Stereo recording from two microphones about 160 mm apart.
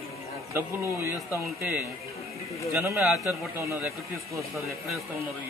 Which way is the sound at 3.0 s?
Centre (ahead or behind).